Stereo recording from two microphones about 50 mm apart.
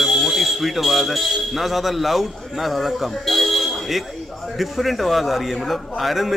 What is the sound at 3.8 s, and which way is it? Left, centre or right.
Buzzer, centre.